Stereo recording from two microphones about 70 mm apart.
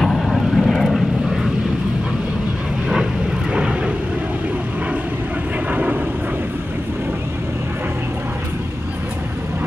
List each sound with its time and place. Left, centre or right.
0.0 s vehicle: centre
3.5 s vehicle: centre
5.7 s vehicle: right